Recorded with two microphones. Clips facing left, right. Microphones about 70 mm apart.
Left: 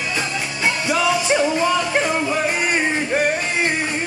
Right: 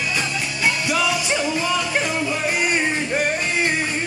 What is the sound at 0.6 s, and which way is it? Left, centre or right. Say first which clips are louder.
Music: left 2 dB; left.